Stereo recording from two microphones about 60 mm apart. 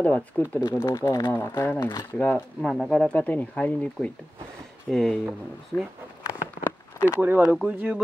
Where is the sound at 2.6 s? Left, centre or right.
Centre.